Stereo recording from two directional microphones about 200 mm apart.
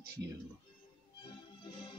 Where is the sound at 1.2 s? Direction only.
25° left (ahead or behind).